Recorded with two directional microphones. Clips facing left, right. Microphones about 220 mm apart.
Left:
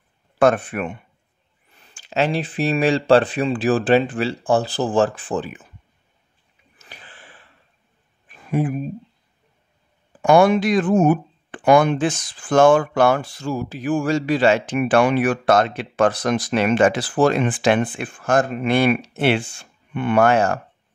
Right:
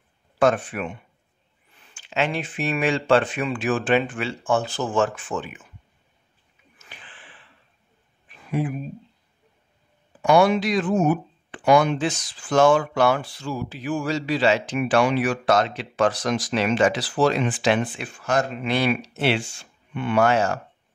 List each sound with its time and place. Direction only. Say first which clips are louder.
0.4 s speech: left 3 dB; 55° left (ahead or behind)
1.8 s speech: left 4 dB; 40° left (ahead or behind)
6.8 s a sound: left 3 dB; 40° left (ahead or behind)
10.2 s speech: left 3 dB; 50° left (ahead or behind)